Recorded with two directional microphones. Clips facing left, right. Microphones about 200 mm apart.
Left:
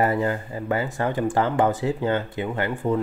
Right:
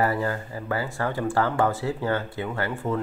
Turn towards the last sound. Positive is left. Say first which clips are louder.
# left 3 dB
turn(degrees=15)  # may be behind; listen again after turning